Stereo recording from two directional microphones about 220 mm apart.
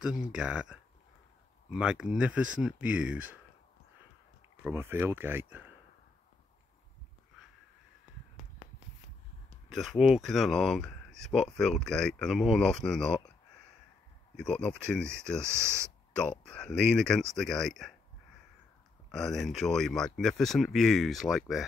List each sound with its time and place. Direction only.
0.0 s speech: 5° right (ahead or behind)
4.6 s speech: 10° right (ahead or behind)
9.7 s speech: centre (ahead or behind)
14.3 s speech: 5° left (ahead or behind)
16.2 s speech: 5° left (ahead or behind)
19.0 s speech: centre (ahead or behind)